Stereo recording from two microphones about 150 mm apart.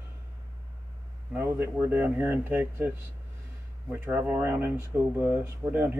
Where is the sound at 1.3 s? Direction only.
15° right (ahead or behind).